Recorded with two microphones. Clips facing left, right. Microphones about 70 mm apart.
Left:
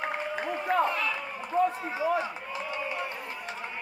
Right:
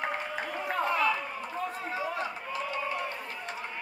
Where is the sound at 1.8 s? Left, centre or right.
Centre.